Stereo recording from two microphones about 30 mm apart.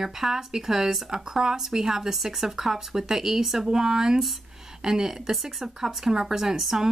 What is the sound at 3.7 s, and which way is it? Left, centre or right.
Speech, right.